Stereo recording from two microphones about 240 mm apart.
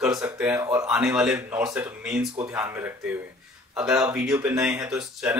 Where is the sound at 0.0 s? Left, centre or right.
Centre.